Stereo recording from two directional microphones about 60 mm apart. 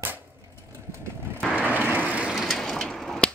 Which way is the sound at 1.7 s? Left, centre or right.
Right.